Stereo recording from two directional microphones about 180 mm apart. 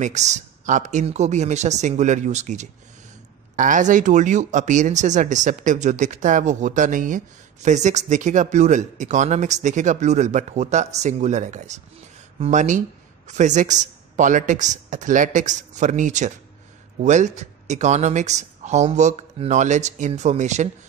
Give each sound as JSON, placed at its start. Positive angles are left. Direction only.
{"t": 0.0, "sound": "a man's voice", "side_deg": -40}